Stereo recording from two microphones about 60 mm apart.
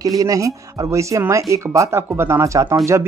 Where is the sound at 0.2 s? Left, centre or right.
Right.